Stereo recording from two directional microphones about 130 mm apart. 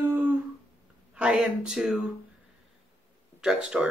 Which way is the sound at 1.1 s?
5° right (ahead or behind).